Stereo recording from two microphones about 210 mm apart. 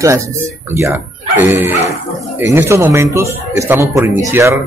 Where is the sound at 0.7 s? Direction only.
10° right (ahead or behind).